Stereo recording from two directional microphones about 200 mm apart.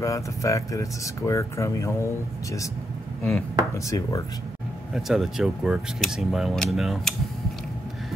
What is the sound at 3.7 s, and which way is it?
Speech, 15° left (ahead or behind).